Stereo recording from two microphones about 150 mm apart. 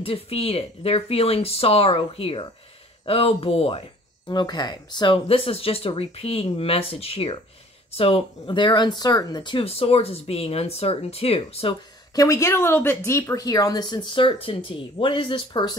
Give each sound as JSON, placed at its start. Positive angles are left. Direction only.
{"t": 0.0, "sound": "speech", "side_deg": 40}
{"t": 12.2, "sound": "speech", "side_deg": 20}